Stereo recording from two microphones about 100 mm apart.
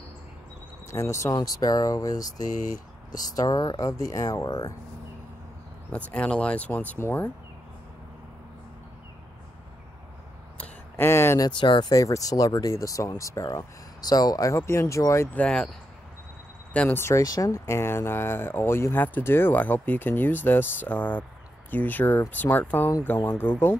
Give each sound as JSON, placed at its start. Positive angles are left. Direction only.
{"t": 0.8, "sound": "speech", "side_deg": 30}
{"t": 6.1, "sound": "speech", "side_deg": 10}
{"t": 10.6, "sound": "a sound", "side_deg": 25}
{"t": 11.4, "sound": "speech", "side_deg": 50}
{"t": 11.9, "sound": "speech", "side_deg": 35}
{"t": 15.3, "sound": "speech", "side_deg": 10}
{"t": 16.7, "sound": "speech", "side_deg": 15}
{"t": 17.0, "sound": "speech", "side_deg": 35}